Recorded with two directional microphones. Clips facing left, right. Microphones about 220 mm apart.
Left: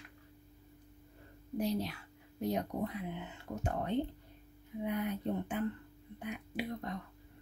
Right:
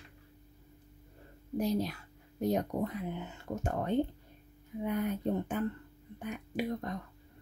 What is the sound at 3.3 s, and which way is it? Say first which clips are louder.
Speech: right 2 dB; 45° right (ahead or behind).